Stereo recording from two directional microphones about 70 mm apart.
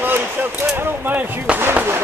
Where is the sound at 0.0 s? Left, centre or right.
Right.